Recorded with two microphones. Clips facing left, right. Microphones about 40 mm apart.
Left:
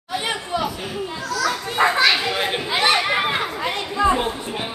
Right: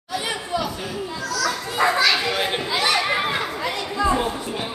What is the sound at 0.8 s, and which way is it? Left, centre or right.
Children playing, left.